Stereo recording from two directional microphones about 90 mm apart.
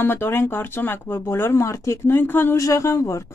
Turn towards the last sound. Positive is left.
turn(degrees=35)  # may be behind; listen again after turning